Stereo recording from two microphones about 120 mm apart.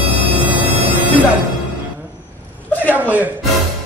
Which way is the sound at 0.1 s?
15° right (ahead or behind).